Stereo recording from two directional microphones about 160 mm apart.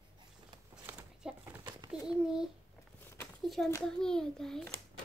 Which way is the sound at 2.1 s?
5° right (ahead or behind).